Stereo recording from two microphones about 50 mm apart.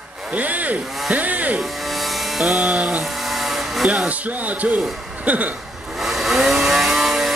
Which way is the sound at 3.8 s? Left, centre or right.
Right.